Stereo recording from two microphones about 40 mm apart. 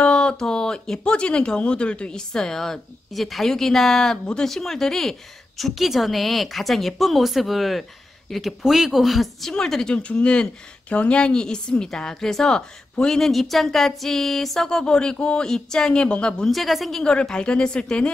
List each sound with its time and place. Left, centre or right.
0.0 s a woman's voice: left
5.6 s a woman's voice: centre
9.5 s speech: centre
9.9 s a woman's voice: left
10.9 s a woman's voice: left
13.2 s a woman's voice: centre; by 15.4 s left
15.4 s a woman's voice: centre
16.4 s a woman's voice: centre
17.0 s a woman's voice: left